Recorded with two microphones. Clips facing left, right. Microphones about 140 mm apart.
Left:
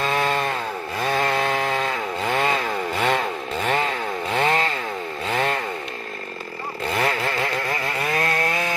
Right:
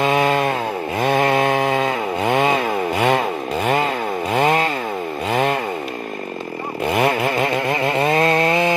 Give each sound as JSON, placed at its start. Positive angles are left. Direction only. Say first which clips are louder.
{"t": 0.0, "sound": "chainsaw", "louder": "right 6 dB", "side_deg": -15}
{"t": 4.3, "sound": "chainsaw", "louder": "right 4 dB", "side_deg": -10}
{"t": 6.9, "sound": "chainsaw", "louder": "right 6 dB", "side_deg": -20}